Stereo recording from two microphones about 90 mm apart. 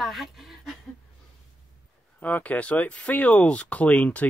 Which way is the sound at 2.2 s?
20° left (ahead or behind).